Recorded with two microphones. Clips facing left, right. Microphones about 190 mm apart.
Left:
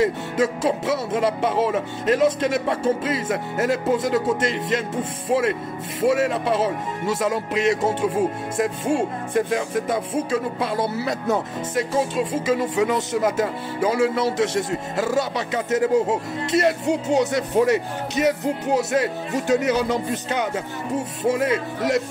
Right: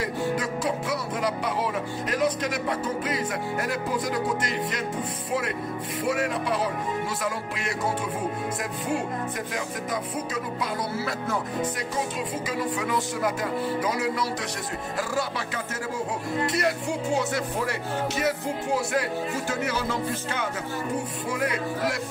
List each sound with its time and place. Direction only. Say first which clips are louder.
0.0 s speech: left 6 dB; 25° left (ahead or behind)
5.9 s speech: left 7 dB; 25° left (ahead or behind)